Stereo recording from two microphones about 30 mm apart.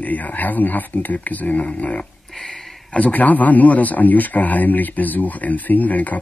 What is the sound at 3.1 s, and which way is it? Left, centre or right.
Speech, left.